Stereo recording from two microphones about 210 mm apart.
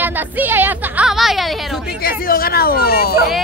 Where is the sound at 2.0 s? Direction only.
45° left (ahead or behind).